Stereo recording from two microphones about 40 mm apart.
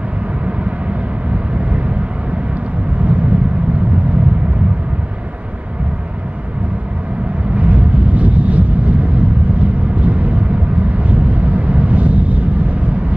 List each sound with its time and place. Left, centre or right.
3.0 s vehicle: right
7.5 s vehicle: right